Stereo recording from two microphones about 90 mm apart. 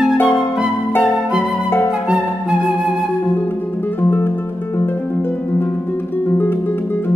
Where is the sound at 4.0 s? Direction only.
25° left (ahead or behind).